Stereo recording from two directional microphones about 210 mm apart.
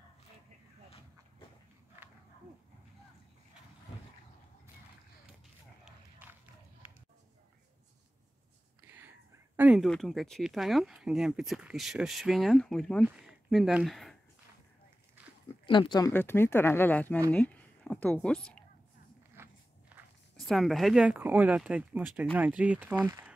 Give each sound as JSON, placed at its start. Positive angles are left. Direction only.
{"t": 5.9, "sound": "a sound", "side_deg": -10}
{"t": 8.8, "sound": "whispering", "side_deg": -10}
{"t": 9.6, "sound": "speech", "side_deg": 0}
{"t": 15.6, "sound": "speech", "side_deg": 25}
{"t": 16.1, "sound": "a woman's voice", "side_deg": 10}
{"t": 19.4, "sound": "walk", "side_deg": -10}
{"t": 20.0, "sound": "speech", "side_deg": 0}